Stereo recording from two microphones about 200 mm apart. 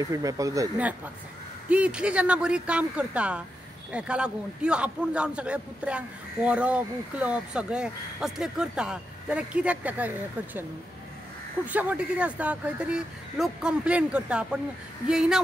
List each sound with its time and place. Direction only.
0.0 s a man's voice: 15° right (ahead or behind)
11.6 s a man's voice: 10° right (ahead or behind)